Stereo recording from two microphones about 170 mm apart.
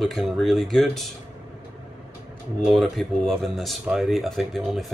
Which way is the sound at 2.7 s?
Centre (ahead or behind).